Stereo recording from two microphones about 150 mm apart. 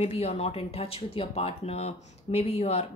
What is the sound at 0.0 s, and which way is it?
Speech, 45° left (ahead or behind).